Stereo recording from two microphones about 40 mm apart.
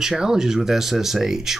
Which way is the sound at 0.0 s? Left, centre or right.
Centre.